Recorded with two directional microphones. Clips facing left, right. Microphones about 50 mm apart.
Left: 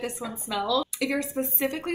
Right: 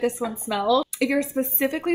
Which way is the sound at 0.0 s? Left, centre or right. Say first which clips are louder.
Right 8 dB; right.